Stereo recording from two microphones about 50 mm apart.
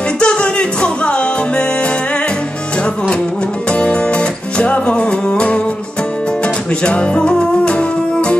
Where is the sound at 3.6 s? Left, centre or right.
Left.